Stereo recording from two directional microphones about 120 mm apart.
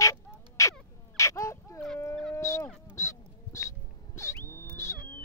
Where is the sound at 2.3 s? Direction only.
25° left (ahead or behind).